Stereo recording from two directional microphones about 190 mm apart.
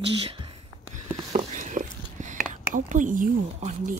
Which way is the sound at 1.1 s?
30° right (ahead or behind).